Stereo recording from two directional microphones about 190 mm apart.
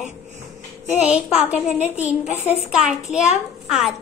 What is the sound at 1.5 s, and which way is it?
Speech, 35° left (ahead or behind).